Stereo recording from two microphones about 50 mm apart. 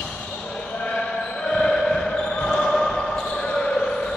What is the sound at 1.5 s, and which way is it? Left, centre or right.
Basketball bounce, centre.